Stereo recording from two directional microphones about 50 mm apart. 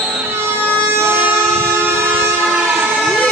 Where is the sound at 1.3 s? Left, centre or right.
Right.